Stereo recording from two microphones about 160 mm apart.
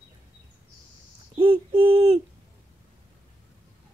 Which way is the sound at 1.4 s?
35° right (ahead or behind).